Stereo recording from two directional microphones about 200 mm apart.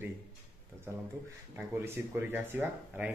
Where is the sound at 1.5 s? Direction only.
10° right (ahead or behind).